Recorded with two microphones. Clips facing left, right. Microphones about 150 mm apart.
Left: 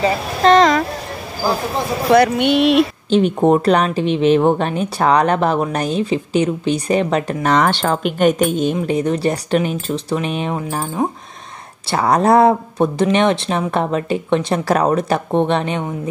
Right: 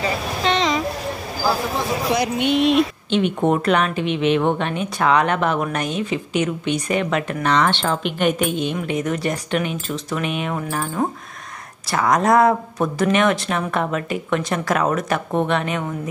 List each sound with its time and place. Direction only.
0.4 s vehicle: 45° left (ahead or behind)
2.0 s speech: 60° left (ahead or behind)
3.1 s a woman's voice: 35° left (ahead or behind)
11.0 s speech: 15° left (ahead or behind)
11.9 s speech: 30° left (ahead or behind)